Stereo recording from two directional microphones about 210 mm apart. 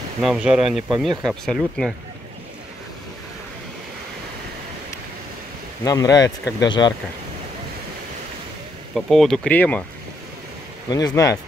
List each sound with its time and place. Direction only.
0.2 s speech: 5° right (ahead or behind)
5.9 s speech: 15° left (ahead or behind)
8.9 s speech: centre (ahead or behind)
10.9 s speech: 15° left (ahead or behind)